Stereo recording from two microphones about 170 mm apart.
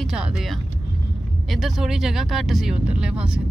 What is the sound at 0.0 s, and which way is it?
Speech, 5° right (ahead or behind).